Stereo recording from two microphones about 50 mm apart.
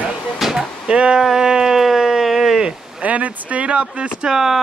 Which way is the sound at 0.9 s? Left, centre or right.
Centre.